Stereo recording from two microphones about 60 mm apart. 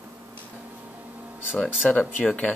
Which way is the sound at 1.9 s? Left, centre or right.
Left.